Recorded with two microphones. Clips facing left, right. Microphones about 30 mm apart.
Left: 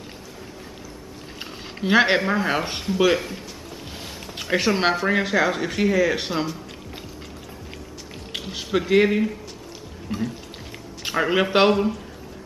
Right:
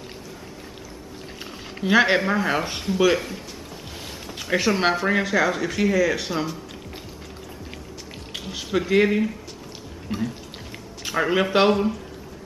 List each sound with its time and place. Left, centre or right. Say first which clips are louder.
1.4 s speech: left 1 dB; centre
8.3 s music: left 2 dB; centre
8.6 s speech: left 1 dB; centre
10.0 s music: even; centre
11.1 s speech: left 1 dB; centre